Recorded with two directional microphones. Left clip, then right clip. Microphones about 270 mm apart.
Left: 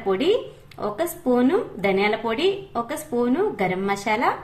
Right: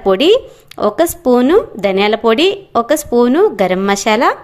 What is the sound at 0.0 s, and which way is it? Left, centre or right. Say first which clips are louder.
A woman's voice: right 11 dB; right.